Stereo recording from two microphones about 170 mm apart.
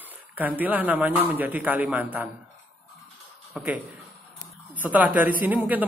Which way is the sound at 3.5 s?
10° right (ahead or behind).